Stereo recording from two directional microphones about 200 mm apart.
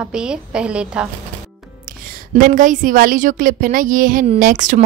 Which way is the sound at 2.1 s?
45° right (ahead or behind).